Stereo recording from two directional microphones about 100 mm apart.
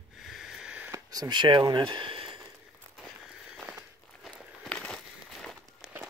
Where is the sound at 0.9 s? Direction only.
40° right (ahead or behind); by 2.4 s 60° right (ahead or behind).